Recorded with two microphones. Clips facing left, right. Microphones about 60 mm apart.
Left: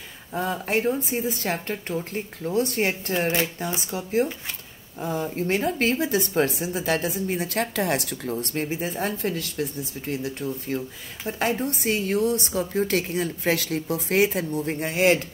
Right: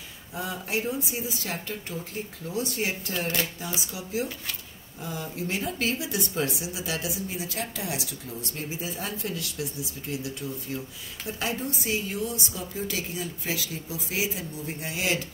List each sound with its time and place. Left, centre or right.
0.3 s speech: left
3.1 s speech: left
3.5 s speech: left